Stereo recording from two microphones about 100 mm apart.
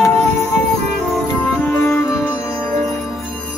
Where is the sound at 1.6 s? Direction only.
20° left (ahead or behind).